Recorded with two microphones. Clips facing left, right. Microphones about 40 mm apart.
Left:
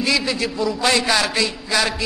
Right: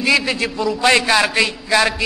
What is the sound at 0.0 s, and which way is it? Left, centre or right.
Speech, right.